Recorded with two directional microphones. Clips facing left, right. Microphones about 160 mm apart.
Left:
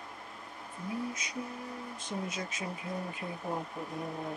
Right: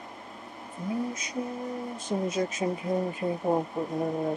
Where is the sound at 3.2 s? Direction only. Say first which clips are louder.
Right 11 dB; 50° right (ahead or behind).